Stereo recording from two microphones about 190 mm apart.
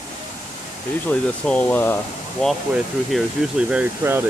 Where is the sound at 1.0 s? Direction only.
10° left (ahead or behind); by 4.2 s 10° right (ahead or behind).